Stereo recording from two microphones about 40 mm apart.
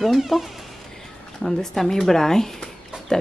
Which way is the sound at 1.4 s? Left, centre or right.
Centre.